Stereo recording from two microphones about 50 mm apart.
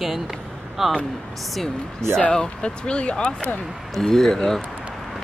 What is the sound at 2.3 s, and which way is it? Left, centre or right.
Speech, centre.